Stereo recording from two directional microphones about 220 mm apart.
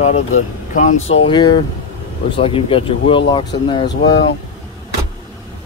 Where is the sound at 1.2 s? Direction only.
20° left (ahead or behind).